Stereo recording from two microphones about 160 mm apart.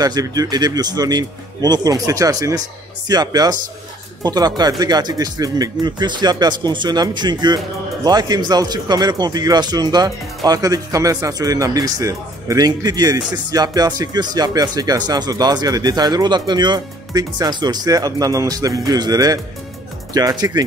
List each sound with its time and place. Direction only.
0.0 s speech: 25° right (ahead or behind)